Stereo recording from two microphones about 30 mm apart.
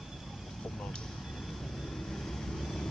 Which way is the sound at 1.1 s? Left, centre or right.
Centre.